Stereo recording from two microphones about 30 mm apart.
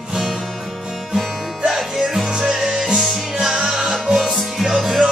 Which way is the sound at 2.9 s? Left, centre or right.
Centre.